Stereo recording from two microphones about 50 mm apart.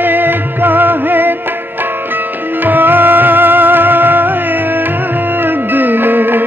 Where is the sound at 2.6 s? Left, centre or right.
Right.